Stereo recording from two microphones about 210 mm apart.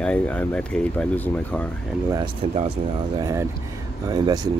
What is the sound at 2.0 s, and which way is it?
Speech, 20° right (ahead or behind).